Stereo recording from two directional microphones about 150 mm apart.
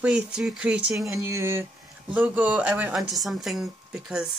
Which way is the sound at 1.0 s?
20° right (ahead or behind).